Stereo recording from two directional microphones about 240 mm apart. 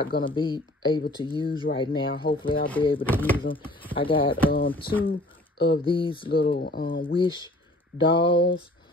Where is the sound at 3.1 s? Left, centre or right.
Centre.